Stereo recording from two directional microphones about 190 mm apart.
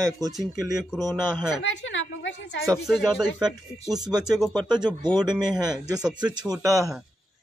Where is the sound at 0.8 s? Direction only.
Centre (ahead or behind).